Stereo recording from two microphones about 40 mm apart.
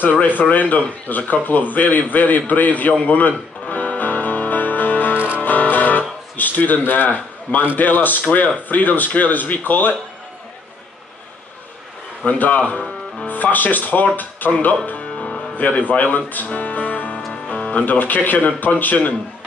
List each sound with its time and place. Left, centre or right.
0.0 s speech: left
3.1 s music: left
5.4 s guitar: left
7.7 s speech: left
12.3 s speech: left
15.0 s music: left
15.5 s speech: left
16.5 s music: left
17.8 s speech: left